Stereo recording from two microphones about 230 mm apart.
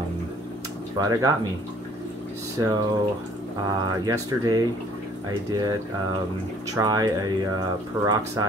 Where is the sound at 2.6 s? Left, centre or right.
Centre.